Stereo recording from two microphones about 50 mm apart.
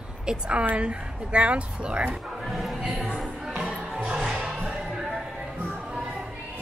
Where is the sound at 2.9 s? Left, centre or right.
Right.